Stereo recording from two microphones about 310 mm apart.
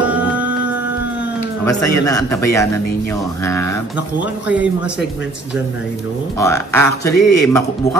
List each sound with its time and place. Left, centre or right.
0.0 s a sound: centre
2.0 s a man's voice: centre
6.4 s a man's voice: centre